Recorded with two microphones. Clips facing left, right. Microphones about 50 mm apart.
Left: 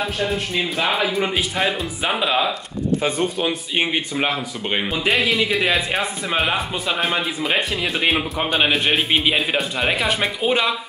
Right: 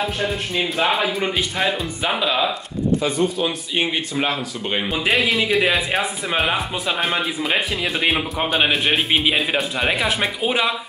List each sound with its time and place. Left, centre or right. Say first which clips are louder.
0.6 s a man's voice: right 2 dB; centre
3.0 s speech: right 1 dB; left
3.4 s speech: left 1 dB; centre
4.9 s a man's voice: even; centre